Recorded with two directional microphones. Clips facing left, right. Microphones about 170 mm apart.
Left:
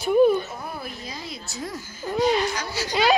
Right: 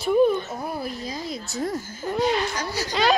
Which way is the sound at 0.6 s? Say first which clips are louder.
Right 5 dB; 35° right (ahead or behind).